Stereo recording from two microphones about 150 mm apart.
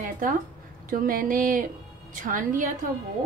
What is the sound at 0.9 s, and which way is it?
A woman's voice, 65° right (ahead or behind).